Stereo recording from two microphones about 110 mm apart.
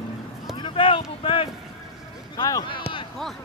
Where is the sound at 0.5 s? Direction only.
50° left (ahead or behind).